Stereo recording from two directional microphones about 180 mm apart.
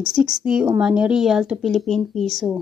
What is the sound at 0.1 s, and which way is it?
Speech, 5° right (ahead or behind).